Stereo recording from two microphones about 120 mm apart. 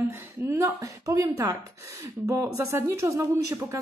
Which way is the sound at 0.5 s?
30° right (ahead or behind).